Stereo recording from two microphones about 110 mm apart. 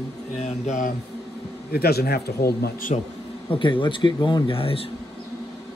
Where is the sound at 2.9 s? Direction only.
90° left.